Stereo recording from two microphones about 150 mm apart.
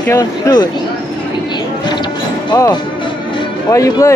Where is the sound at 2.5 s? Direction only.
25° left (ahead or behind).